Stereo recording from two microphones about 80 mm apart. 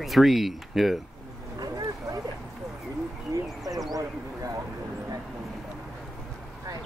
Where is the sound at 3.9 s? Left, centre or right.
Right.